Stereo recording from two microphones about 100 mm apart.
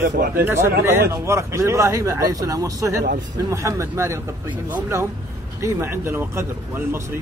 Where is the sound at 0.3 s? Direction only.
20° right (ahead or behind).